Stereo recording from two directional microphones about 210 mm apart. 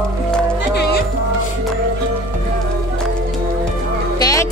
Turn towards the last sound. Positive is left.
turn(degrees=15)  # may be behind; listen again after turning